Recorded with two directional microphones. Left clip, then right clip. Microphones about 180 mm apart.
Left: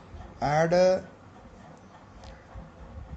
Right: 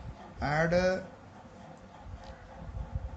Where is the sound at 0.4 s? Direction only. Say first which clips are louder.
Left 6 dB; 30° left (ahead or behind).